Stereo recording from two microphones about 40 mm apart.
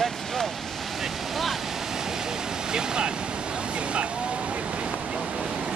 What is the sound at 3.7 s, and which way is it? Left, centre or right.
Waves, right.